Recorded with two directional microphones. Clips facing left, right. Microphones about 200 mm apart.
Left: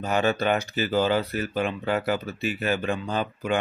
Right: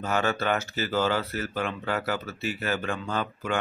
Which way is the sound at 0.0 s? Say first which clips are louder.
Left 3 dB; 15° left (ahead or behind).